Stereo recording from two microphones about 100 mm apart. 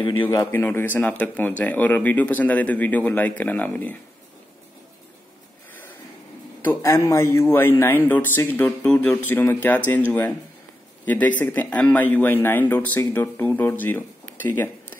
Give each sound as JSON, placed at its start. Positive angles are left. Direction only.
{"t": 0.3, "sound": "speech", "side_deg": 35}
{"t": 0.6, "sound": "speech", "side_deg": 20}
{"t": 6.6, "sound": "a man's voice", "side_deg": 25}
{"t": 11.1, "sound": "a man's voice", "side_deg": 15}